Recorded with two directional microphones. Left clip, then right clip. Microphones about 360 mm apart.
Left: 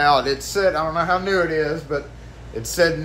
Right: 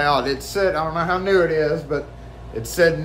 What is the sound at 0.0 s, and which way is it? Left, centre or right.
Speech, centre.